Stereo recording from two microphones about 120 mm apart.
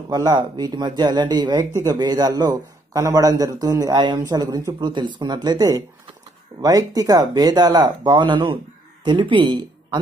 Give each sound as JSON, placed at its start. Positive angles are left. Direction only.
{"t": 0.1, "sound": "a man's voice", "side_deg": -35}